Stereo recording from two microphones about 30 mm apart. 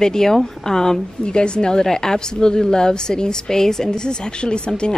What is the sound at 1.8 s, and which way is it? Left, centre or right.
A woman's voice, centre.